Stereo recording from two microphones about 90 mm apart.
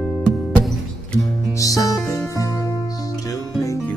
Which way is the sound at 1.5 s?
40° left (ahead or behind).